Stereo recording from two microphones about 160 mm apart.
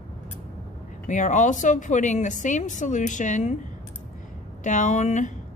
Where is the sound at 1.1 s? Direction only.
50° left (ahead or behind).